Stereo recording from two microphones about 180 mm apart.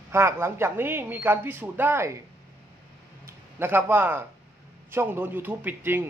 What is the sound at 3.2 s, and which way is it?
A man's voice, 10° right (ahead or behind).